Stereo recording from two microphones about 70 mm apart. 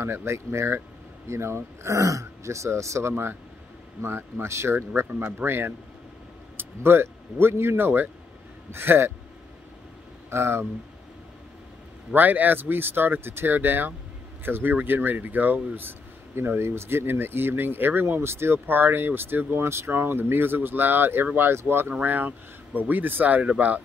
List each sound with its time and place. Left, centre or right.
0.0 s speech: right
10.3 s speech: right
12.1 s speech: right